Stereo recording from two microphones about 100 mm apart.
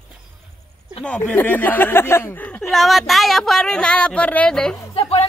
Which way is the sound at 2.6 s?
Centre (ahead or behind).